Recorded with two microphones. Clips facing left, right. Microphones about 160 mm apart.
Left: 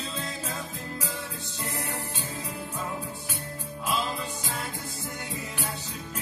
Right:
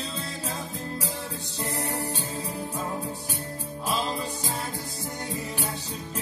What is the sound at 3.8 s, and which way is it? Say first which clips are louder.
Music: right 1 dB; 35° right (ahead or behind).